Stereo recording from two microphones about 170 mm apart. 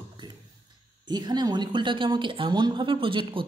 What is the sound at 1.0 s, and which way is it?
A woman's voice, 25° right (ahead or behind).